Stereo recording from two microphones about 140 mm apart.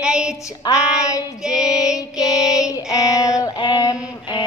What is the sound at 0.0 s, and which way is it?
Female singing, 5° right (ahead or behind).